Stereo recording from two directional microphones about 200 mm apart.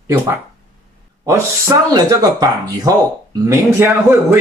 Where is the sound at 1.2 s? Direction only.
15° right (ahead or behind).